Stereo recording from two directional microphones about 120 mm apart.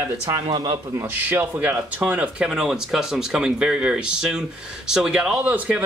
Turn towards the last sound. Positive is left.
turn(degrees=-15)  # may be behind; listen again after turning